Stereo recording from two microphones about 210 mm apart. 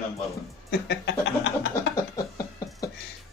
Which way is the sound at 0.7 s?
60° left (ahead or behind).